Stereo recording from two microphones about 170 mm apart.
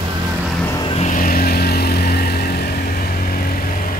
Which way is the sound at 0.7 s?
25° left (ahead or behind).